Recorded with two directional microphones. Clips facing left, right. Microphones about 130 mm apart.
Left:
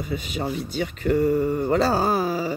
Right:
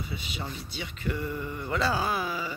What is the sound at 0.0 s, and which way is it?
Speech, 45° left (ahead or behind).